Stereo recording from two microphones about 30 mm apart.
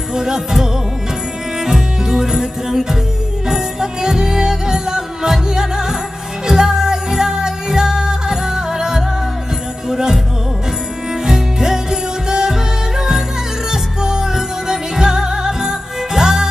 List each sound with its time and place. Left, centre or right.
0.1 s music: centre
11.2 s music: centre
13.7 s music: centre